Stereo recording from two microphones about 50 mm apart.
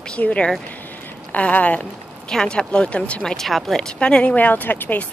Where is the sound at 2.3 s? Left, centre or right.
Centre.